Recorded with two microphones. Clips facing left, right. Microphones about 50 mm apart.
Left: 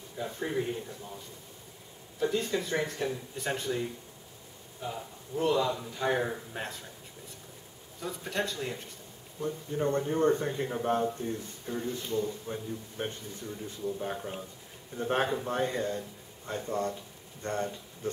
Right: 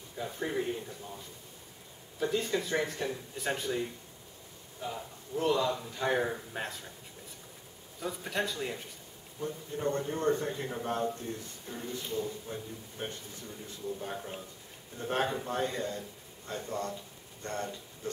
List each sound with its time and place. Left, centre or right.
0.2 s a man's voice: centre
8.0 s a man's voice: centre
9.4 s speech: centre
11.1 s speech: centre
11.7 s a man's voice: centre
12.5 s speech: centre